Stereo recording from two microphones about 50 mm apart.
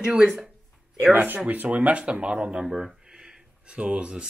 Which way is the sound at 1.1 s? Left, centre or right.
Right.